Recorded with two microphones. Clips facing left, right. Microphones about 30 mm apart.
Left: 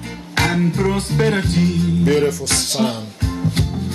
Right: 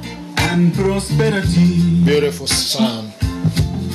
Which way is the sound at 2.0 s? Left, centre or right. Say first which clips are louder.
Right 1 dB; right.